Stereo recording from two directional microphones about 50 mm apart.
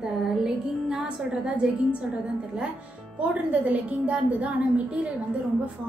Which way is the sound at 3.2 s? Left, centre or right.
Right.